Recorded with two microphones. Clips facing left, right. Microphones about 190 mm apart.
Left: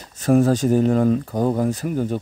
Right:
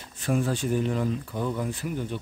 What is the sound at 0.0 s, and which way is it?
Speech, 40° left (ahead or behind).